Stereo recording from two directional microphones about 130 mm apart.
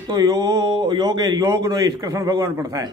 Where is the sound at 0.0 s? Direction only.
30° right (ahead or behind).